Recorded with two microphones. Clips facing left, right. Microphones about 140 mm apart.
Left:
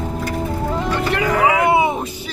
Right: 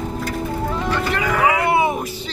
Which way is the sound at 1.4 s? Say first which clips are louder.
Left 2 dB; 20° left (ahead or behind).